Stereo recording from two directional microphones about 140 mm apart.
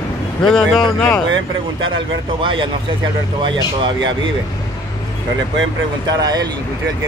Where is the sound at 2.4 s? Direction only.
35° right (ahead or behind).